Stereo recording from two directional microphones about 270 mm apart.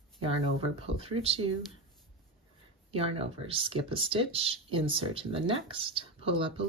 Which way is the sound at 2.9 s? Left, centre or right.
Right.